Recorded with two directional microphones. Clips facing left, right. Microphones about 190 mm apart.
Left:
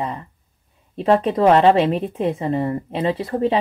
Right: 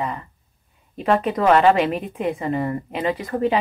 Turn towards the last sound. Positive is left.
turn(degrees=30)  # may be behind; listen again after turning